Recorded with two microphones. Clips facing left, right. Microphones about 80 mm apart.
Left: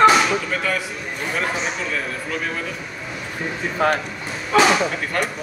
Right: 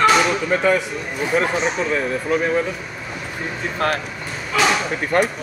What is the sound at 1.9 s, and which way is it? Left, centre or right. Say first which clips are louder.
Speech: right 6 dB; right.